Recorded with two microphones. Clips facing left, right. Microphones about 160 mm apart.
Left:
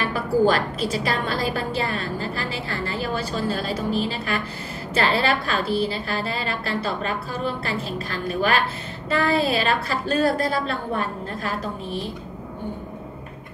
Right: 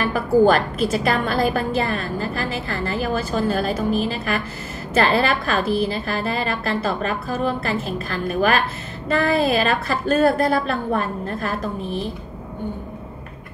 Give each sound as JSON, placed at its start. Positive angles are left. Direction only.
{"t": 0.1, "sound": "a woman's voice", "side_deg": -50}